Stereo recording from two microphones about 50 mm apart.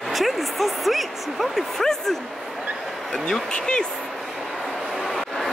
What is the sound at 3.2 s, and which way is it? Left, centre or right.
Speech, centre.